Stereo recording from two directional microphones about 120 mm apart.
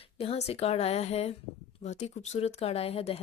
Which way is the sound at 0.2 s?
60° left (ahead or behind).